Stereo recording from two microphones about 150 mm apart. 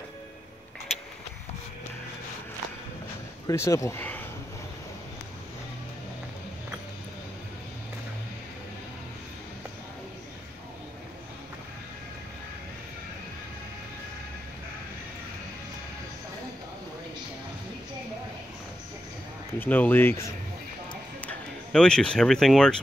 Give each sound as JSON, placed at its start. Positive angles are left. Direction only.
{"t": 3.4, "sound": "speech", "side_deg": 20}
{"t": 19.6, "sound": "speech", "side_deg": 10}
{"t": 20.9, "sound": "a sound", "side_deg": 10}